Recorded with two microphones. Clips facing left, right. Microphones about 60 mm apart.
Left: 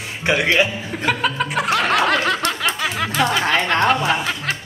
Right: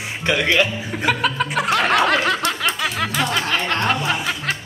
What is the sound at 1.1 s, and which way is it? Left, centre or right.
Speech, centre.